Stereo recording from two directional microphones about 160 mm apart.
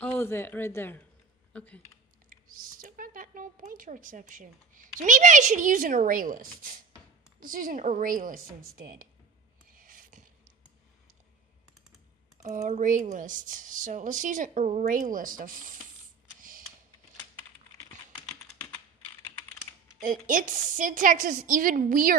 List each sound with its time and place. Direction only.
0.0 s a woman's voice: 15° left (ahead or behind)
2.2 s speech: 60° right (ahead or behind)
9.7 s a sound: 60° right (ahead or behind)
12.6 s a woman's voice: 50° right (ahead or behind)
16.3 s computer keyboard: 60° right (ahead or behind)
20.0 s speech: 55° right (ahead or behind)